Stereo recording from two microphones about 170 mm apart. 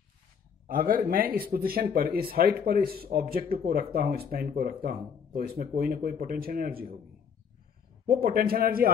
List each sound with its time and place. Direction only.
0.7 s speech: 55° right (ahead or behind)
8.1 s speech: 60° right (ahead or behind)